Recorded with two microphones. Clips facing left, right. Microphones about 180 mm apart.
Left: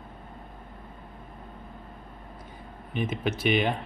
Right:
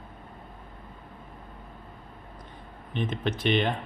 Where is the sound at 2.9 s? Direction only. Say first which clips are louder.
Left 1 dB; 10° left (ahead or behind).